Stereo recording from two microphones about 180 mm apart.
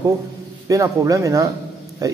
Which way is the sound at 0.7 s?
20° right (ahead or behind).